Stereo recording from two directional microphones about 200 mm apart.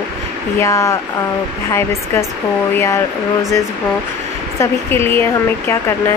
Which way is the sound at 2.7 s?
15° left (ahead or behind).